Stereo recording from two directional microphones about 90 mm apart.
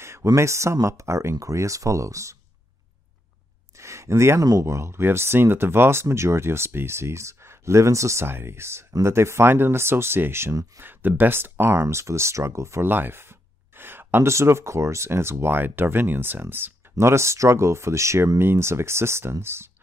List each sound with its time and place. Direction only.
0.0 s speech: 35° right (ahead or behind)
3.7 s a sound: 35° right (ahead or behind)
4.5 s speech: 35° right (ahead or behind)